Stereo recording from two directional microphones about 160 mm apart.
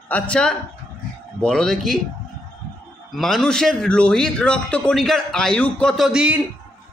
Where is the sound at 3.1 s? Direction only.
Centre (ahead or behind).